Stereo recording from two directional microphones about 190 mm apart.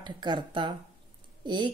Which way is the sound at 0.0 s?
25° right (ahead or behind).